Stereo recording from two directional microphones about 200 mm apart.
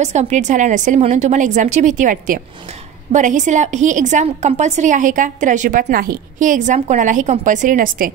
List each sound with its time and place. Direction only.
0.0 s a woman's voice: 35° right (ahead or behind)